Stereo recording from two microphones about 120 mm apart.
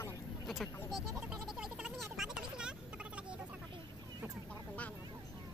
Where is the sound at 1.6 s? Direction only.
5° right (ahead or behind).